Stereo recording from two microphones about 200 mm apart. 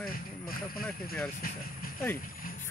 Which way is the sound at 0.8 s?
5° left (ahead or behind).